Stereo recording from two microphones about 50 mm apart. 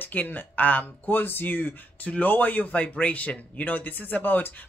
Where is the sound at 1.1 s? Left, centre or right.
Left.